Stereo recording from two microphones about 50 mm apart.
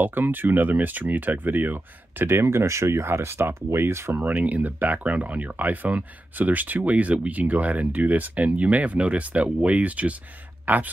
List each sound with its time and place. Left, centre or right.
0.0 s speech: right
4.1 s speech: right
10.6 s a sound: right